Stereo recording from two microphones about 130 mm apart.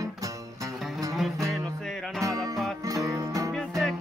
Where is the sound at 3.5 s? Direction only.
5° left (ahead or behind).